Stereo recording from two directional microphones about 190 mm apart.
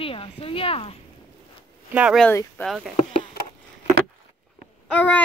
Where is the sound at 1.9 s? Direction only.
5° right (ahead or behind).